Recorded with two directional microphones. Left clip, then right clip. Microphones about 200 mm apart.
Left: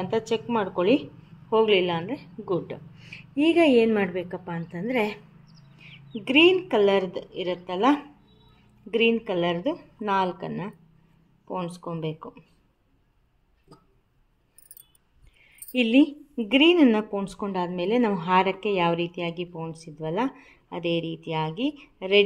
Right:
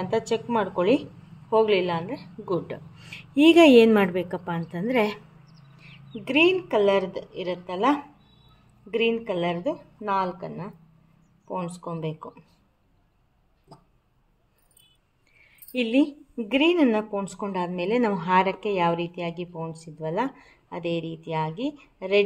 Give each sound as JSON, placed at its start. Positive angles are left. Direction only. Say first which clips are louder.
{"t": 0.0, "sound": "a woman's voice", "louder": "right 1 dB", "side_deg": 0}
{"t": 2.4, "sound": "a woman's voice", "louder": "even", "side_deg": 0}
{"t": 3.0, "sound": "a woman's voice", "louder": "right 5 dB", "side_deg": -15}
{"t": 5.8, "sound": "a woman's voice", "louder": "left 2 dB", "side_deg": 15}
{"t": 11.4, "sound": "a woman's voice", "louder": "even", "side_deg": 10}
{"t": 15.4, "sound": "a woman's voice", "louder": "left 3 dB", "side_deg": 15}